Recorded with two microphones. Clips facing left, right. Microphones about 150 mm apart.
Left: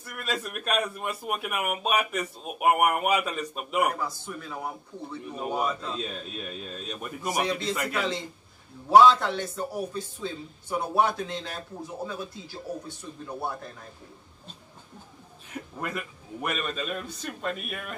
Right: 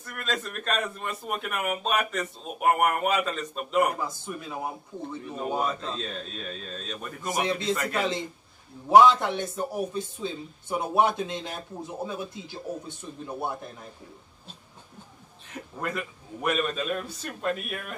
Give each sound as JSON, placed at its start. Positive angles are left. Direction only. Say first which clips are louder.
{"t": 0.0, "sound": "a man's voice", "louder": "even", "side_deg": 10}
{"t": 4.0, "sound": "a man's voice", "louder": "right 1 dB", "side_deg": -15}
{"t": 5.3, "sound": "a man's voice", "louder": "even", "side_deg": 5}
{"t": 7.3, "sound": "speech", "louder": "right 1 dB", "side_deg": -20}
{"t": 7.7, "sound": "a man's voice", "louder": "right 2 dB", "side_deg": 0}
{"t": 8.8, "sound": "a man's voice", "louder": "even", "side_deg": -15}
{"t": 15.5, "sound": "a man's voice", "louder": "right 1 dB", "side_deg": 5}